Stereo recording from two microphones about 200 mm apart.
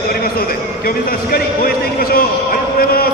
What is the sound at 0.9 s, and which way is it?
Speech, 50° left (ahead or behind).